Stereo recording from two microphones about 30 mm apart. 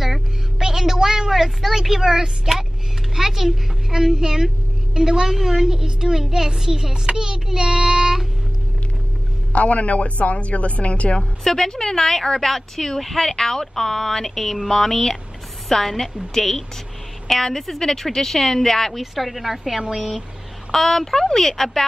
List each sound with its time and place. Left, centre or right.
0.6 s a sound: centre
1.3 s a woman's voice: centre
2.0 s a child's voice: right
9.5 s a man's voice: left
11.4 s a woman's voice: centre
20.7 s a woman's voice: centre